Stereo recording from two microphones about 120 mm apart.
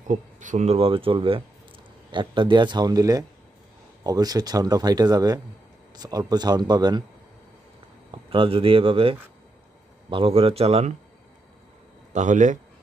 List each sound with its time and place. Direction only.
0.1 s speech: 90° right; by 7.1 s 35° right (ahead or behind)
8.1 s speech: 45° right (ahead or behind)
12.1 s a man's voice: 90° right